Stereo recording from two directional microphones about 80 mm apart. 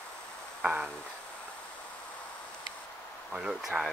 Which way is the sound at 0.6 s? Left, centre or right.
Centre.